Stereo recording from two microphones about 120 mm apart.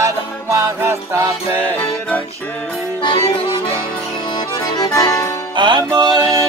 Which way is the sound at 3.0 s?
45° left (ahead or behind).